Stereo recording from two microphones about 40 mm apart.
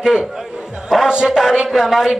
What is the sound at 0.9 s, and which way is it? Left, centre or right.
Music, centre.